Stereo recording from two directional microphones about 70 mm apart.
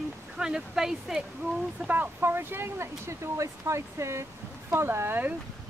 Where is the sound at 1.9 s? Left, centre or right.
Right.